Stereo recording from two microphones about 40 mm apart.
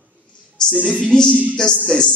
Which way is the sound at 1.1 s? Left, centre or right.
Left.